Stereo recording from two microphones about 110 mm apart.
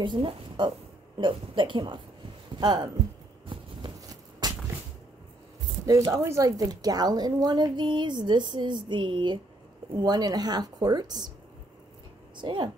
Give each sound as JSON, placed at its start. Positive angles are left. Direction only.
{"t": 0.0, "sound": "a woman's voice", "side_deg": -45}
{"t": 3.5, "sound": "a sound", "side_deg": -50}
{"t": 4.1, "sound": "walk", "side_deg": -35}
{"t": 5.9, "sound": "a woman's voice", "side_deg": -30}
{"t": 12.4, "sound": "a woman's voice", "side_deg": -45}